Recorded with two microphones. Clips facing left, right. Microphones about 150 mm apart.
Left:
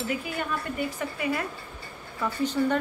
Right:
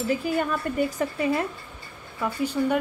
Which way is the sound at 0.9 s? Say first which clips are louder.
Right 5 dB; 30° right (ahead or behind).